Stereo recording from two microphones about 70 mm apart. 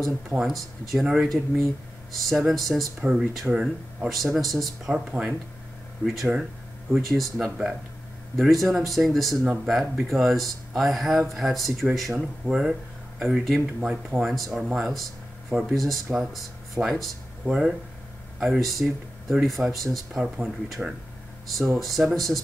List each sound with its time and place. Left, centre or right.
0.4 s speech: centre
14.2 s speech: centre